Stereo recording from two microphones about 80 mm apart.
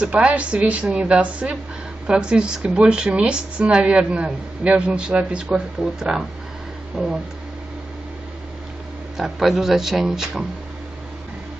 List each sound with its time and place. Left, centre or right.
0.0 s a woman's voice: centre
9.1 s speech: centre